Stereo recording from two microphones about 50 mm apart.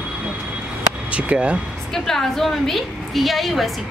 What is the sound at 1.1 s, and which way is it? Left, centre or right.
Speech, right.